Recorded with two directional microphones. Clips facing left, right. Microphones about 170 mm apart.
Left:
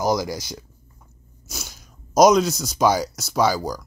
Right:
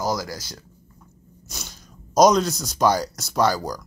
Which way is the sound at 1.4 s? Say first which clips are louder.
Left 2 dB; 5° left (ahead or behind).